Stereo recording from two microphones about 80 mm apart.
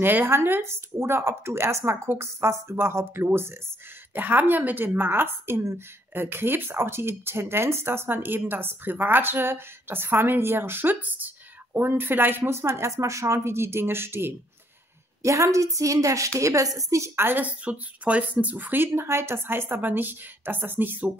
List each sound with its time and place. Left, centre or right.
0.0 s speech: right
15.2 s a woman's voice: right
18.9 s speech: right